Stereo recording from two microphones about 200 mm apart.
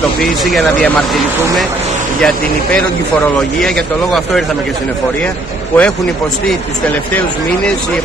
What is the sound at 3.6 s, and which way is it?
Speech, centre (ahead or behind).